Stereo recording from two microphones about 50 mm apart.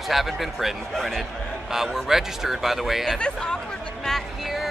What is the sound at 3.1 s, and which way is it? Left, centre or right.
Speech, centre.